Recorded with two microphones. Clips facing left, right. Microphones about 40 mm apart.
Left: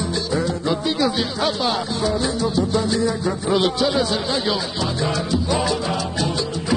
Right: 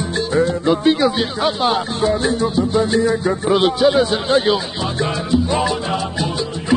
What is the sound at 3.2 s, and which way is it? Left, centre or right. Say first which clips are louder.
Music: right 4 dB; right.